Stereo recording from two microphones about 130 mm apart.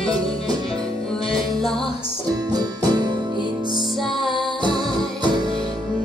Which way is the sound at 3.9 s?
Centre (ahead or behind).